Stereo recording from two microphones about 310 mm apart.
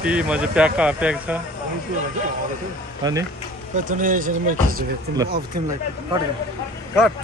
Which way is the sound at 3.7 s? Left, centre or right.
Right.